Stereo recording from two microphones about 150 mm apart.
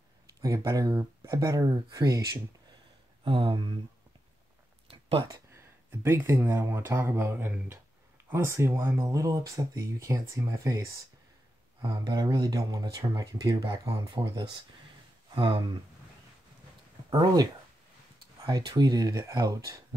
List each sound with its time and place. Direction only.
0.4 s speech: 20° right (ahead or behind)
3.3 s speech: 35° right (ahead or behind)
4.8 s a sound: 35° right (ahead or behind)
5.5 s speech: 15° right (ahead or behind); by 15.8 s 35° right (ahead or behind)
17.1 s speech: 25° right (ahead or behind)